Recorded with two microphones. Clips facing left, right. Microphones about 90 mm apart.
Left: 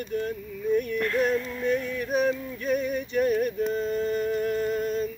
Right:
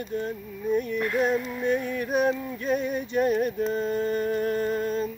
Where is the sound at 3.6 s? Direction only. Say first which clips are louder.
Even; 35° right (ahead or behind).